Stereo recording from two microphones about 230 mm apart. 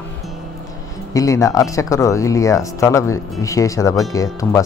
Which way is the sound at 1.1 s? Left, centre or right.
Centre.